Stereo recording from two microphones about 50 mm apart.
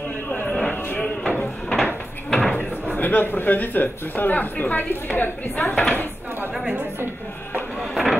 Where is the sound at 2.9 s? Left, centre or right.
Left.